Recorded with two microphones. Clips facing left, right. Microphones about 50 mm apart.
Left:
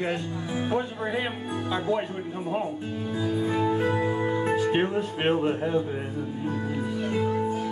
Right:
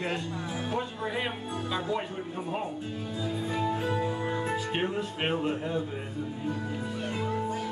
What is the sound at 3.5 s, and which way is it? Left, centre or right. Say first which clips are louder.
Music: left 4 dB; left.